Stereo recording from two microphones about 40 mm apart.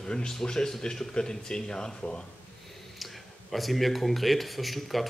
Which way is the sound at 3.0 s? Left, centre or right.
Centre.